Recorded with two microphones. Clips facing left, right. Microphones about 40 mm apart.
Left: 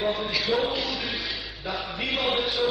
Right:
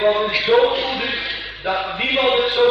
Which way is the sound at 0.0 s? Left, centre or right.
Right.